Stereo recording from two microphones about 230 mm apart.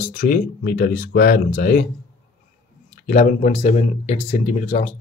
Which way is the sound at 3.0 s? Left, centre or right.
Left.